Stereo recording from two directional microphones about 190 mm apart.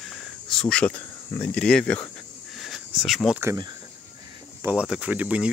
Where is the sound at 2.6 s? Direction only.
Centre (ahead or behind).